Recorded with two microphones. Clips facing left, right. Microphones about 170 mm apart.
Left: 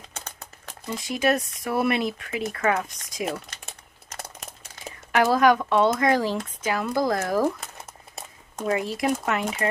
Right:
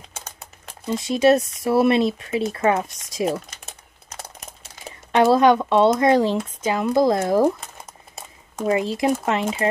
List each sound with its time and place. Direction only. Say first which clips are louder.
0.1 s crumpling: right 1 dB; 5° right (ahead or behind)
0.8 s speech: right 7 dB; 25° right (ahead or behind)
5.1 s speech: right 4 dB; 25° right (ahead or behind)
8.6 s speech: right 4 dB; 25° right (ahead or behind)